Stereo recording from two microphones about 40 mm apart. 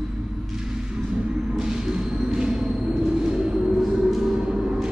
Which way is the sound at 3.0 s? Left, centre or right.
Centre.